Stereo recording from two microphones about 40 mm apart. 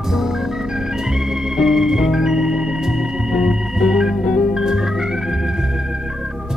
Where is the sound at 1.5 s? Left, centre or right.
Centre.